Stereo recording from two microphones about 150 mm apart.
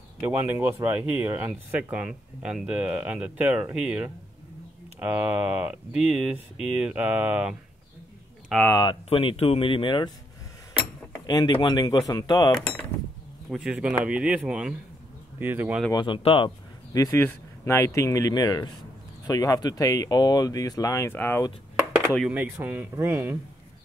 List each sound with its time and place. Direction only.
0.2 s speech: 15° right (ahead or behind)
8.6 s speech: 25° left (ahead or behind)
9.1 s speech: 35° left (ahead or behind)
11.2 s speech: 30° left (ahead or behind)
13.5 s speech: 5° right (ahead or behind)
15.9 s speech: 30° left (ahead or behind)
16.9 s speech: 20° left (ahead or behind)
22.2 s speech: 10° right (ahead or behind)